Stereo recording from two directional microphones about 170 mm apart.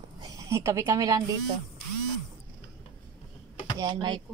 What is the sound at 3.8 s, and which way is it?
Speech, 25° right (ahead or behind).